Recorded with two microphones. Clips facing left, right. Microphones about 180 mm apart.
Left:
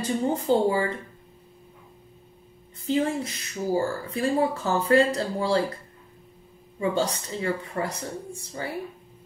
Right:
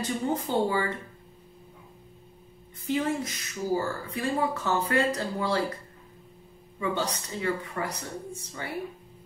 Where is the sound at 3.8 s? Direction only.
35° left (ahead or behind).